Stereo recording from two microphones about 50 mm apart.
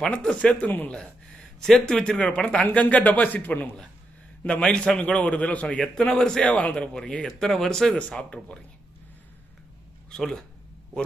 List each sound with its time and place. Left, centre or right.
0.1 s speech: centre
4.5 s speech: centre
5.9 s speech: centre
6.4 s speech: left
7.3 s speech: centre
7.9 s speech: left